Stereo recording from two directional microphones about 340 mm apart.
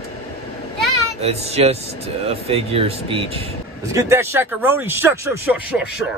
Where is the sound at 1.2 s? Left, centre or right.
Centre.